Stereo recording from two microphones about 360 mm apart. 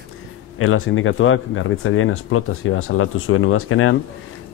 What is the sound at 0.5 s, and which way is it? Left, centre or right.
Speech, left.